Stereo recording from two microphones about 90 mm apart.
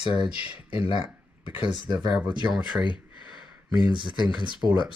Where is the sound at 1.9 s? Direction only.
10° right (ahead or behind).